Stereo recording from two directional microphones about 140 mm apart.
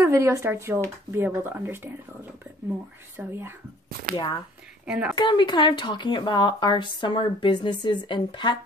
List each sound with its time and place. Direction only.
0.0 s speech: 20° right (ahead or behind)
3.2 s speech: 15° right (ahead or behind)
4.1 s speech: 30° left (ahead or behind)
4.8 s a woman's voice: 5° right (ahead or behind)
5.1 s speech: 30° left (ahead or behind)